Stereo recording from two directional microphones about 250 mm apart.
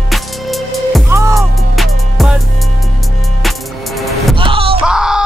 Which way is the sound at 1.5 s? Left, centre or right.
Centre.